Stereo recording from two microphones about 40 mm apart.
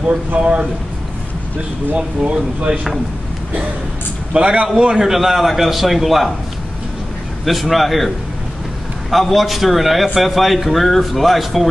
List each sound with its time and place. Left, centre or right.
0.4 s speech: right
2.0 s speech: right
4.3 s a man's voice: right
5.0 s a man's voice: centre
7.4 s a man's voice: centre
9.1 s a man's voice: centre